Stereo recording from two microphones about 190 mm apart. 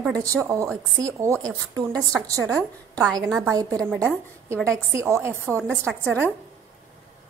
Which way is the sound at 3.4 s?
15° right (ahead or behind).